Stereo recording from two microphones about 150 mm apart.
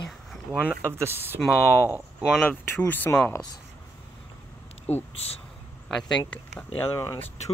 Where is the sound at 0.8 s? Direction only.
15° right (ahead or behind).